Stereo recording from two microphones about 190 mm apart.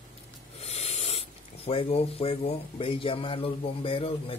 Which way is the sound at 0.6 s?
35° left (ahead or behind).